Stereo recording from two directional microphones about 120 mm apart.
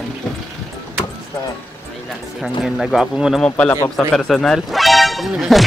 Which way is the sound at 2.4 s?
Centre (ahead or behind).